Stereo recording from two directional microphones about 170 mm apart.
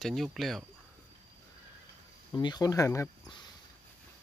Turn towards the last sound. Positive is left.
turn(degrees=20)  # may be behind; listen again after turning